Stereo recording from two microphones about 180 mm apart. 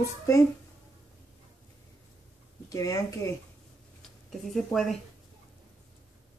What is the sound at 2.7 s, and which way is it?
Speech, 20° left (ahead or behind).